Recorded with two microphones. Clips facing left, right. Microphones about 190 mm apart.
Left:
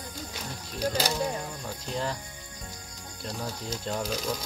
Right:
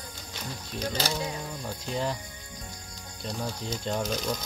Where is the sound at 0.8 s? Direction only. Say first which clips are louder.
Left 3 dB; 10° left (ahead or behind).